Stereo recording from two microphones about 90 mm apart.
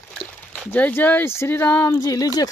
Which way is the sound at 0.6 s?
20° left (ahead or behind).